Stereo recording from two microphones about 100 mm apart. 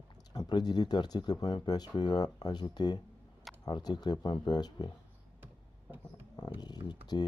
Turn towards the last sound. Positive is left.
turn(degrees=45)  # may be behind; listen again after turning